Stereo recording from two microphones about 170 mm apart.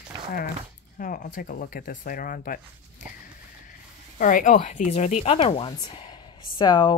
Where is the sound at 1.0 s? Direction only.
50° left (ahead or behind).